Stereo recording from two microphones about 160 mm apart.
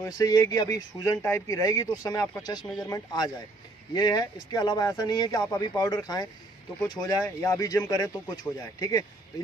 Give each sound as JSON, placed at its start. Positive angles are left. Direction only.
{"t": 0.0, "sound": "speech", "side_deg": 20}